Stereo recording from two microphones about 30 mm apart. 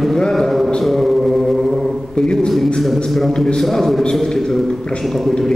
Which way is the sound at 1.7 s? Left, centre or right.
Centre.